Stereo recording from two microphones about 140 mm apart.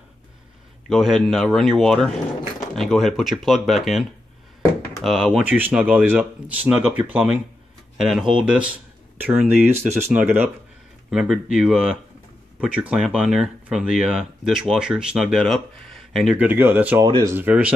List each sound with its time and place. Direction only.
0.8 s speech: centre (ahead or behind)
16.4 s speech: 15° right (ahead or behind)
17.0 s speech: 25° right (ahead or behind)
17.4 s speech: 10° right (ahead or behind)